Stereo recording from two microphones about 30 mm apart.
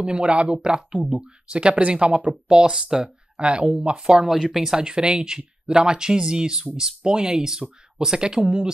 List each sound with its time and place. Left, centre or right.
0.0 s speech: right
0.6 s speech: right
1.5 s speech: right
2.4 s speech: right
3.3 s speech: right
4.3 s speech: centre
4.7 s speech: right